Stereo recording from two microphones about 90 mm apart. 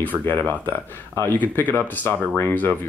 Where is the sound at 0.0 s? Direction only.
20° left (ahead or behind).